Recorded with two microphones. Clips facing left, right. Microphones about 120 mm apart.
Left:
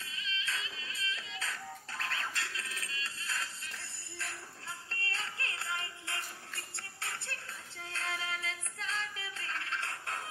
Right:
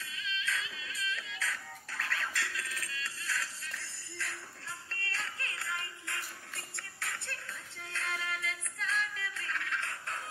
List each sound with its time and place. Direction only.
0.0 s music: 25° left (ahead or behind)
5.1 s music: 25° left (ahead or behind)